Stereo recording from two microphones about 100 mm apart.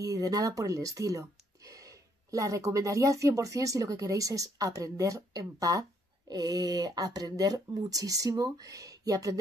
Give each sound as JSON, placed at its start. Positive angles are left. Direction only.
{"t": 0.0, "sound": "speech", "side_deg": -35}